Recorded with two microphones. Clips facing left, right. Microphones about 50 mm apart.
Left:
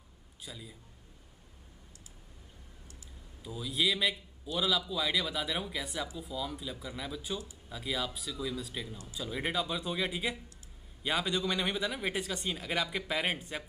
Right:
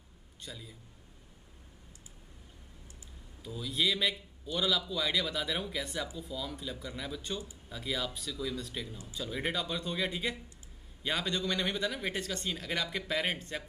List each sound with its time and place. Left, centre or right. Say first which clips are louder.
0.4 s a man's voice: even; centre
3.4 s a man's voice: even; centre